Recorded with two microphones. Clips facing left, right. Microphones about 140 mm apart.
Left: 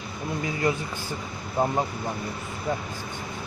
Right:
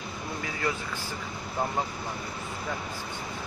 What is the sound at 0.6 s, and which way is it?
Speech, 15° left (ahead or behind).